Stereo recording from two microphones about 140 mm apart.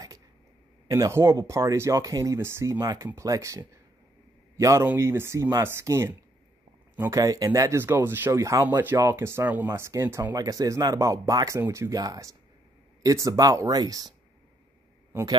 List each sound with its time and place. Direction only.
0.8 s speech: 25° right (ahead or behind)